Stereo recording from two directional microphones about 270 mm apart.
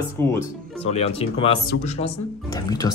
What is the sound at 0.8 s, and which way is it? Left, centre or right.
A woman's voice, left.